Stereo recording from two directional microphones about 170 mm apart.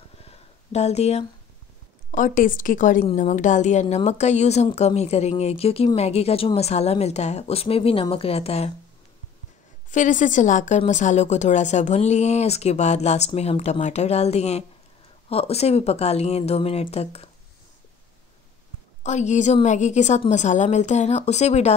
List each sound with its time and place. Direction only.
0.2 s a sound: 35° left (ahead or behind)
2.0 s a woman's voice: 50° left (ahead or behind)
9.8 s a woman's voice: 45° left (ahead or behind)
19.0 s a woman's voice: 45° left (ahead or behind)